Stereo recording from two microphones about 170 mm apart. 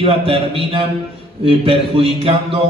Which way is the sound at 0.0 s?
35° right (ahead or behind).